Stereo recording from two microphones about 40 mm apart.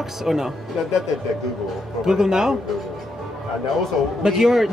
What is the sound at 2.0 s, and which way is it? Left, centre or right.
Speech, centre.